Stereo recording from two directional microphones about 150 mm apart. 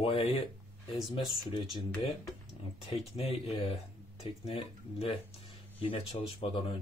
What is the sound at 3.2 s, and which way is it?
Speech, 40° left (ahead or behind).